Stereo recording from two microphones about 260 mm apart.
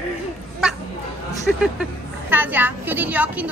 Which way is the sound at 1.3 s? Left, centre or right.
Centre.